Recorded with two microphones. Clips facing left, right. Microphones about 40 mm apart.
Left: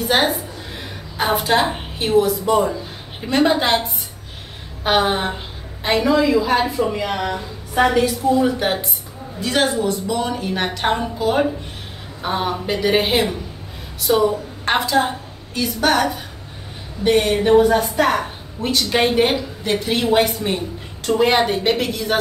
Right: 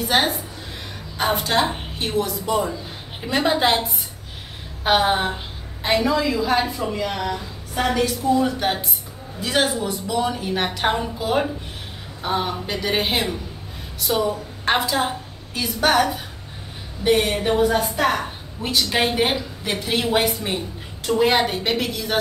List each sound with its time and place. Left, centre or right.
0.0 s music: centre
1.1 s a woman's voice: centre